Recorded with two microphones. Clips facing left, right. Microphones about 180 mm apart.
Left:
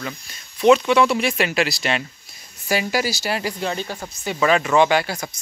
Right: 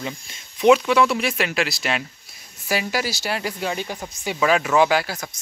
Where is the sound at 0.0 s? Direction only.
20° right (ahead or behind).